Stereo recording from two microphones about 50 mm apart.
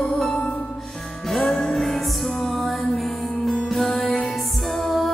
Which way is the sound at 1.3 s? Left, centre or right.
Centre.